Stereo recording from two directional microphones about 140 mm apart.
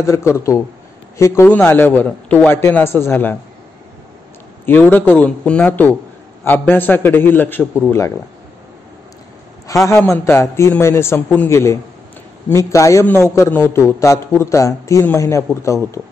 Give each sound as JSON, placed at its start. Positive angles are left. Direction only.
{"t": 0.0, "sound": "a man's voice", "side_deg": 20}
{"t": 4.6, "sound": "a man's voice", "side_deg": 15}
{"t": 9.8, "sound": "a man's voice", "side_deg": 20}